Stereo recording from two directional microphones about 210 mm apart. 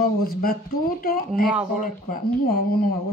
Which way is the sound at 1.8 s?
45° left (ahead or behind).